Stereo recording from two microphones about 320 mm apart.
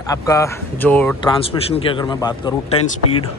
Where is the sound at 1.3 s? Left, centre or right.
Centre.